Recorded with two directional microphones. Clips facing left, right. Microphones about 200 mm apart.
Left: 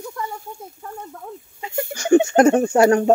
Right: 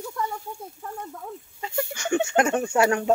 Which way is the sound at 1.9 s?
40° left (ahead or behind).